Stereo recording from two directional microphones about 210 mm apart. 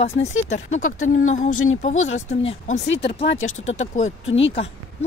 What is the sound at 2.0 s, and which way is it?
Speech, 65° left (ahead or behind).